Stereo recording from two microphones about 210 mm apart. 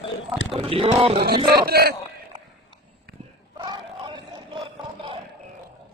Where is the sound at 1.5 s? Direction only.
45° right (ahead or behind).